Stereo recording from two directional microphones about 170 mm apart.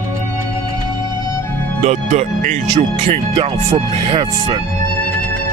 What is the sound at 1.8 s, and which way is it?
Speech, 40° right (ahead or behind).